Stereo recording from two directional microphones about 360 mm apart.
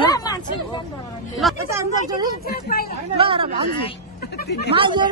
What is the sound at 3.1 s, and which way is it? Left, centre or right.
Speech, centre.